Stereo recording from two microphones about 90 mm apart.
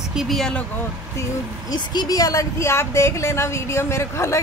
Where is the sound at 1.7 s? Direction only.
45° left (ahead or behind).